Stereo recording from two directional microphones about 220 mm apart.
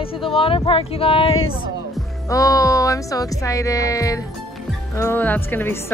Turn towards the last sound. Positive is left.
turn(degrees=10)  # may be behind; listen again after turning